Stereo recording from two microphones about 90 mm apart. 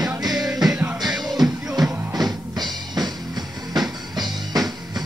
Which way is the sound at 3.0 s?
50° right (ahead or behind).